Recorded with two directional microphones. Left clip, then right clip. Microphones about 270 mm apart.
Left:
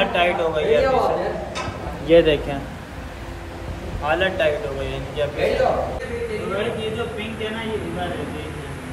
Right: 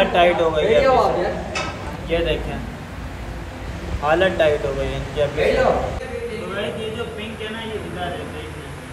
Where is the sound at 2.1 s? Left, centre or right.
Left.